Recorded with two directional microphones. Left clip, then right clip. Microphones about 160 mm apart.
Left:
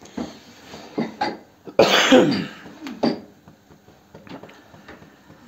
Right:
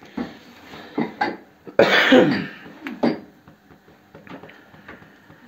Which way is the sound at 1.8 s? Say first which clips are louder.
Even; 20° left (ahead or behind).